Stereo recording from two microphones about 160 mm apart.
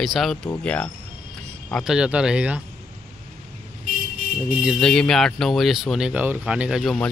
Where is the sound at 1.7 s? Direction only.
5° right (ahead or behind).